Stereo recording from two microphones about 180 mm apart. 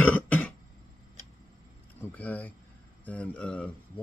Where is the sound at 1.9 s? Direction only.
10° left (ahead or behind).